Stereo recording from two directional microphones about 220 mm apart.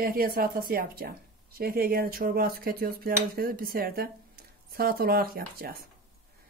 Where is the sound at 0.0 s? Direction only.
40° right (ahead or behind).